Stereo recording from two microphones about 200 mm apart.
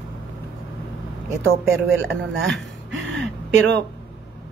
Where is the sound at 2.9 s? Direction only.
65° right (ahead or behind).